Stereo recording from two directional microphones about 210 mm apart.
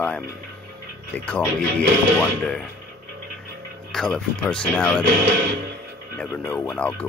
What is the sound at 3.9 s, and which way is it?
Speech, 5° left (ahead or behind).